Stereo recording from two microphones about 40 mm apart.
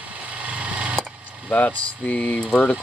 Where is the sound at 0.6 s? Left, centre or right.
Right.